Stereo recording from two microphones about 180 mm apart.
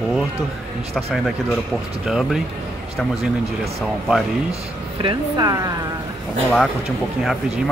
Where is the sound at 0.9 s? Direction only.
Centre (ahead or behind).